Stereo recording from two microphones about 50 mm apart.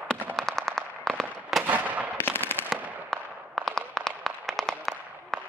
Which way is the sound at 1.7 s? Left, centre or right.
Right.